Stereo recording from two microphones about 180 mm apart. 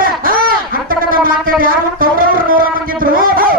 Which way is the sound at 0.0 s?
50° right (ahead or behind).